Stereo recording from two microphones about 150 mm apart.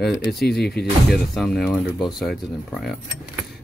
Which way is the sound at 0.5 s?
90° left.